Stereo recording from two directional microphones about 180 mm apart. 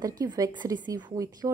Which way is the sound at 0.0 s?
20° right (ahead or behind).